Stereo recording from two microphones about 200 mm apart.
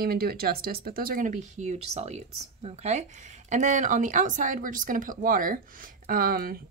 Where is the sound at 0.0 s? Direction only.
50° right (ahead or behind).